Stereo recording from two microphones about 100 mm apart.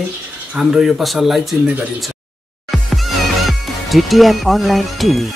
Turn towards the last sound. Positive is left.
turn(degrees=0)  # may be behind; listen again after turning